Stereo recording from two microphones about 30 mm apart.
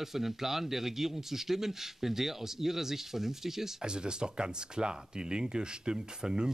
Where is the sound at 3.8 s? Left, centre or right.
Right.